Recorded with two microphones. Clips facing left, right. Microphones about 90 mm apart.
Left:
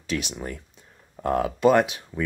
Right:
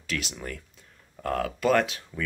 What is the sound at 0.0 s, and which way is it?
Speech, 20° left (ahead or behind).